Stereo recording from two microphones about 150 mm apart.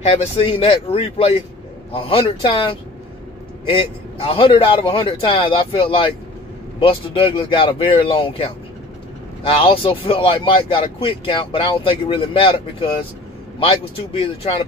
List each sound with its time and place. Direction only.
0.1 s speech: 40° left (ahead or behind)